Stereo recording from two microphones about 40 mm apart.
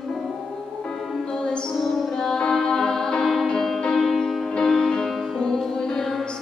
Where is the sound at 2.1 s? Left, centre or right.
Centre.